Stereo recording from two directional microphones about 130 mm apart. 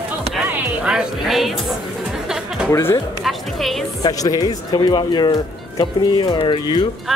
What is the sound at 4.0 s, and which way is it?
Speech, 30° left (ahead or behind).